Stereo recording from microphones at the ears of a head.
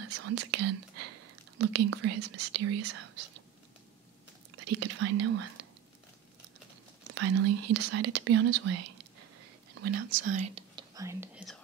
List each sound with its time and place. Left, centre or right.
0.1 s speech: right
4.6 s speech: right
7.1 s speech: right